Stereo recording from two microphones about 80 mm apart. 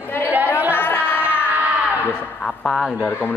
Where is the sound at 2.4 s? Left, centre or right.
Centre.